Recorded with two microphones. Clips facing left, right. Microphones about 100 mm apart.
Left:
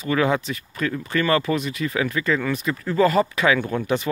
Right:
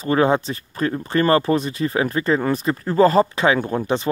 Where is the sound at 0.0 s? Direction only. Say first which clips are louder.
Right 4 dB; 35° right (ahead or behind).